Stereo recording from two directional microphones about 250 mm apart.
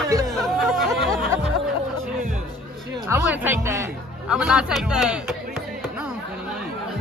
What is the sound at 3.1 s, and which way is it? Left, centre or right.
A man's voice, centre.